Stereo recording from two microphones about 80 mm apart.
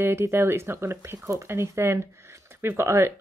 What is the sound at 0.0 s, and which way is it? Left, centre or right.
Speech, right.